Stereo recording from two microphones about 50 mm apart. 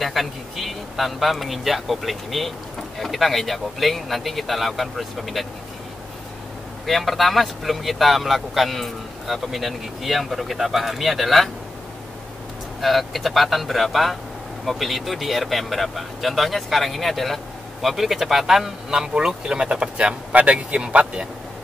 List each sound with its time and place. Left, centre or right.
0.0 s speech: centre
6.9 s speech: centre
12.8 s speech: centre